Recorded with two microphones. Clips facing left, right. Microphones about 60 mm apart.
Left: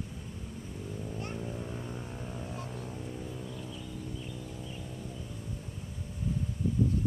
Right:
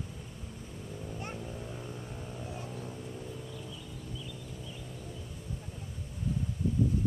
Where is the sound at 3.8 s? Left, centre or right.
Left.